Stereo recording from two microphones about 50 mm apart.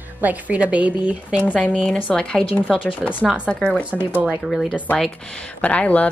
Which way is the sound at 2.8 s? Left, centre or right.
Left.